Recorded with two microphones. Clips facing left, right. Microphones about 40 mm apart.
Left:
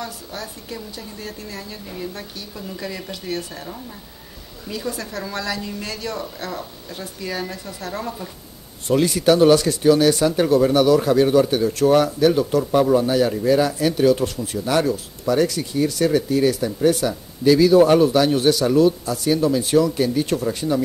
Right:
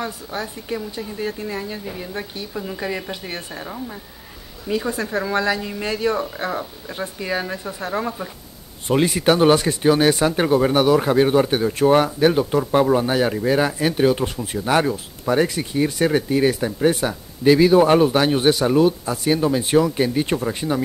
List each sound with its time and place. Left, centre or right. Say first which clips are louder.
0.0 s speech: right 4 dB; right